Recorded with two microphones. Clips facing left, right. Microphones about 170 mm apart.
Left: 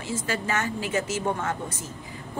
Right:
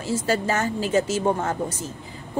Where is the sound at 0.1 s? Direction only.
35° right (ahead or behind).